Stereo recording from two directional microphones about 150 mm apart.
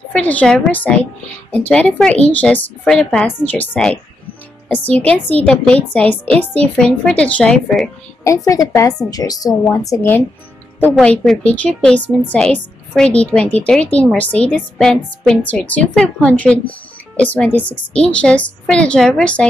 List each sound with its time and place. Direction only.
0.1 s speech: 10° left (ahead or behind)
8.2 s a woman's voice: 20° left (ahead or behind)
11.0 s speech: 5° left (ahead or behind)